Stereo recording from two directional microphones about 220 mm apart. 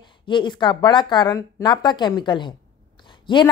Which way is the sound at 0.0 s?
20° left (ahead or behind).